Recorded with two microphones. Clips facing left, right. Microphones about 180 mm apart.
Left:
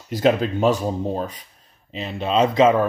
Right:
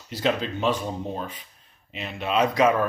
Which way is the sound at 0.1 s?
45° left (ahead or behind).